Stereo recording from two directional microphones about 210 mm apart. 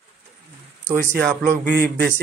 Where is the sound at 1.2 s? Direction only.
Centre (ahead or behind).